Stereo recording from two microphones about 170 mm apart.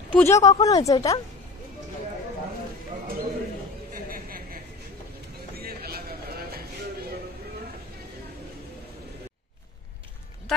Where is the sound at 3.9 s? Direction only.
60° right (ahead or behind).